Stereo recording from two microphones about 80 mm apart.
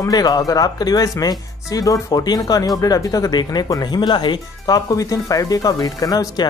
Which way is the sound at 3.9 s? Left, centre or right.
Left.